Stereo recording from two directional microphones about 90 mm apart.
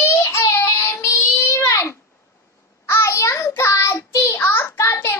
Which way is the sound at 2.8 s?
30° left (ahead or behind).